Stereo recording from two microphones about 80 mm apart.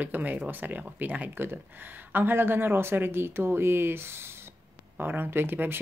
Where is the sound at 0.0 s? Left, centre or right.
Right.